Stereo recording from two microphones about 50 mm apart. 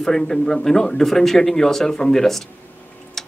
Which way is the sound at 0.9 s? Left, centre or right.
Centre.